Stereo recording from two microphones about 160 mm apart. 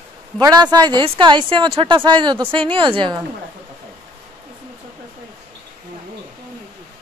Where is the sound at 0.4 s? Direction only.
25° right (ahead or behind).